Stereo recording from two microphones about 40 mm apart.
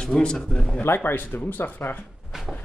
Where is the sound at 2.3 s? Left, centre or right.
Centre.